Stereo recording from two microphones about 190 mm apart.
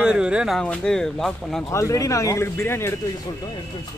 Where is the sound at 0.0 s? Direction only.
5° right (ahead or behind).